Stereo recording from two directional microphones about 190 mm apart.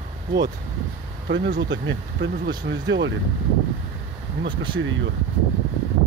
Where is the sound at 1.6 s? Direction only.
70° right (ahead or behind).